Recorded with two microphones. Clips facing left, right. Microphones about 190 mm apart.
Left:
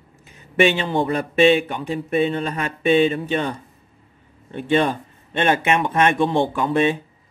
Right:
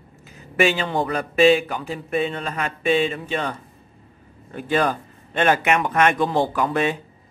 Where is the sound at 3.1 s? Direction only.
30° left (ahead or behind).